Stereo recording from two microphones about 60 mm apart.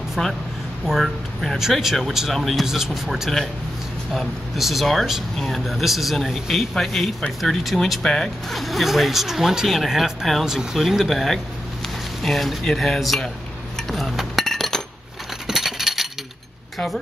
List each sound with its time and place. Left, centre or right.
0.2 s speech: centre
0.8 s speech: centre
13.8 s chink: centre
15.4 s patter: centre